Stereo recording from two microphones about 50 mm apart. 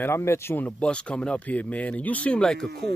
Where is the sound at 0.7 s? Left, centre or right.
Left.